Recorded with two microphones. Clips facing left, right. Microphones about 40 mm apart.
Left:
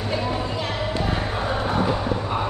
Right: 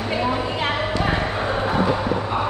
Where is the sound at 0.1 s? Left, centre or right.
Right.